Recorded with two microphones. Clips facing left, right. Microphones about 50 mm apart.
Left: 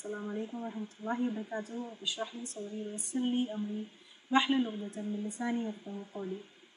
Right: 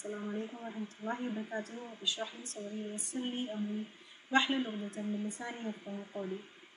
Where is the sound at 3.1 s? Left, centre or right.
Centre.